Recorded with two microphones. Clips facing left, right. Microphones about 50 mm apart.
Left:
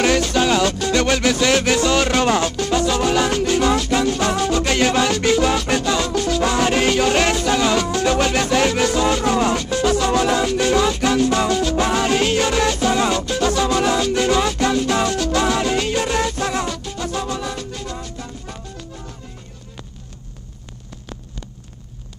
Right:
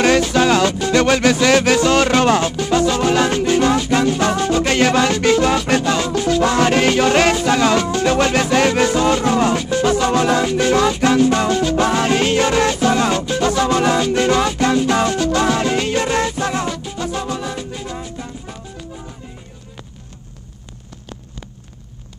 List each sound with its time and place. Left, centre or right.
0.2 s music: centre
6.4 s music: right
6.7 s music: centre